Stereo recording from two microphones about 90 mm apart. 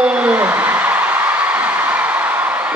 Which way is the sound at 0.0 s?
10° right (ahead or behind).